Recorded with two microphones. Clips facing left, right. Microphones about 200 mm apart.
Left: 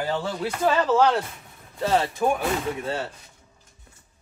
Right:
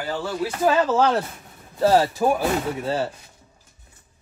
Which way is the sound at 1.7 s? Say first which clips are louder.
Right 5 dB; 35° right (ahead or behind).